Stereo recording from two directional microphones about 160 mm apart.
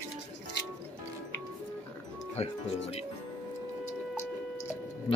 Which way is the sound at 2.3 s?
40° left (ahead or behind).